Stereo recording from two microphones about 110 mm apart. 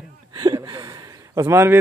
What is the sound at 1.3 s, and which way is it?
Speech, 25° right (ahead or behind).